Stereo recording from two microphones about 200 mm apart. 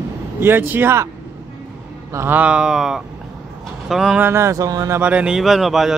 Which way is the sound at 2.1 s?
10° right (ahead or behind).